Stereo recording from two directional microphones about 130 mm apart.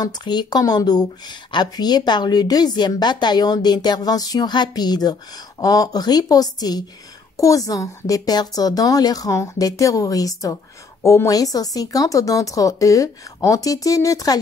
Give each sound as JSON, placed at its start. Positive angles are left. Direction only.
{"t": 0.0, "sound": "a woman's voice", "side_deg": 35}